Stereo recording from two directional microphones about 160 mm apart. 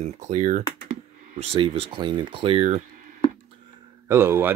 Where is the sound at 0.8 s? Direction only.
50° right (ahead or behind).